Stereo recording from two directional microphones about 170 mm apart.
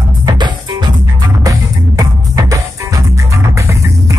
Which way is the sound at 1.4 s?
20° right (ahead or behind).